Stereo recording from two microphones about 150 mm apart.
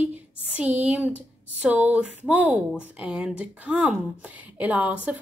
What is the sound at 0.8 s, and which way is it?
A woman's voice, 10° right (ahead or behind).